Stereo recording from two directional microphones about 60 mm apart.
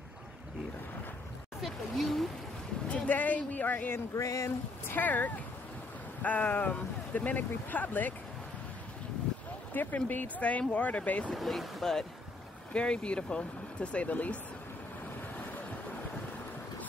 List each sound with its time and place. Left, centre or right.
1.6 s vehicle: centre
2.9 s speech: left
4.1 s speech: left
4.8 s speech: left
9.8 s speech: left
11.3 s speech: centre
12.7 s speech: centre